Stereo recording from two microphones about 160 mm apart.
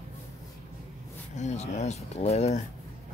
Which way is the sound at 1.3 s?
45° left (ahead or behind).